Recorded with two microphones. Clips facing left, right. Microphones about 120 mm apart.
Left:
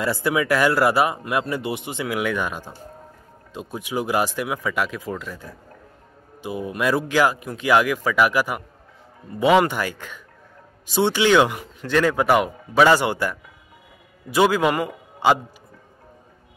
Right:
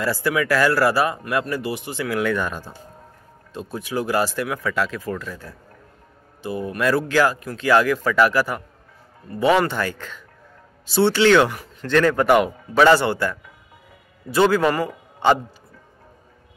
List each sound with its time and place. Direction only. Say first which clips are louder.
0.0 s a man's voice: even; 20° left (ahead or behind)